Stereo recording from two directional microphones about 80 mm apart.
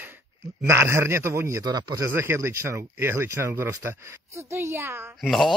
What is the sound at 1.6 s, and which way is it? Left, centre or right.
Speech, right.